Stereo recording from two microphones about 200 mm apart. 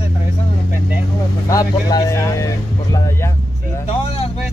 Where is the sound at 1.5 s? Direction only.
20° left (ahead or behind).